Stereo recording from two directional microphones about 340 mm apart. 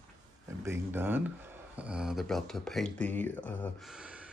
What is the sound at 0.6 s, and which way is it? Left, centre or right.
Speech, centre.